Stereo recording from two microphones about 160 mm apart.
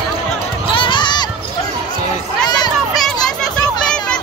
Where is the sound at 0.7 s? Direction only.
30° left (ahead or behind).